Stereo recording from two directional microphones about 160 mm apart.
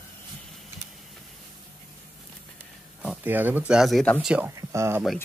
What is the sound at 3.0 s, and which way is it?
Speech, 10° right (ahead or behind).